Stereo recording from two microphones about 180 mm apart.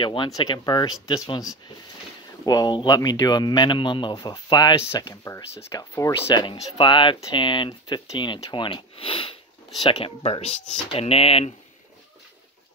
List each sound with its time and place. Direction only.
0.0 s speech: 25° left (ahead or behind)